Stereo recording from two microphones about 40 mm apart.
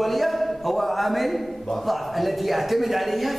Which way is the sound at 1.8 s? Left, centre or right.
Centre.